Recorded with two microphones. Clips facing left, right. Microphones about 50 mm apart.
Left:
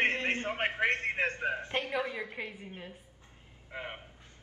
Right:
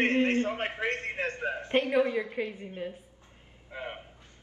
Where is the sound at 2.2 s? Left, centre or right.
Centre.